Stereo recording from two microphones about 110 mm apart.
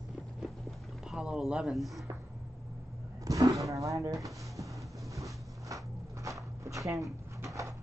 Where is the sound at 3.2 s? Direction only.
30° right (ahead or behind).